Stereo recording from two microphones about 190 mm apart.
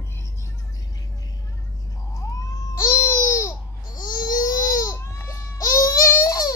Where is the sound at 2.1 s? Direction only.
20° left (ahead or behind).